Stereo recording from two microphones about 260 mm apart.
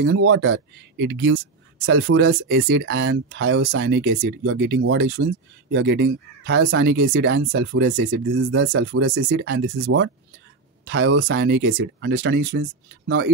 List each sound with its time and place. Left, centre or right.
0.0 s speech: right